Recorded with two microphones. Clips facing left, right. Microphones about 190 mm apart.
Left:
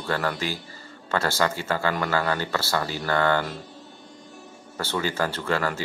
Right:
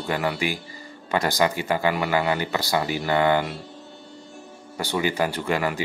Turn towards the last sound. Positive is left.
turn(degrees=-15)  # may be behind; listen again after turning